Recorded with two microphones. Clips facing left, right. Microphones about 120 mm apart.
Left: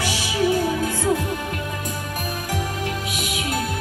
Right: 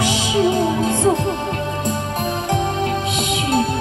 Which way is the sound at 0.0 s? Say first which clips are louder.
Right 5 dB; 20° right (ahead or behind).